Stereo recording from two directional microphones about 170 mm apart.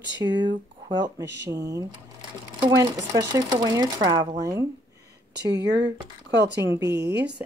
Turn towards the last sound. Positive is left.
turn(degrees=-85)